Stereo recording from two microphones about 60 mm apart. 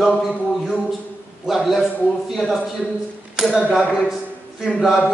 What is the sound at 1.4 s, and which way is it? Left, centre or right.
A man's voice, centre.